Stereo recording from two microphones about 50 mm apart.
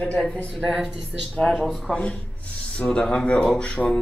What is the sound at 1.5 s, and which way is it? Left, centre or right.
Speech, centre.